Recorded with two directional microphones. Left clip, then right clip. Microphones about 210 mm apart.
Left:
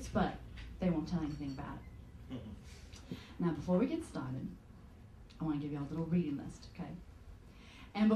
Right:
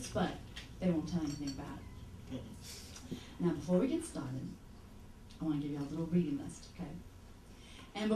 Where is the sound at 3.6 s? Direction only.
30° left (ahead or behind).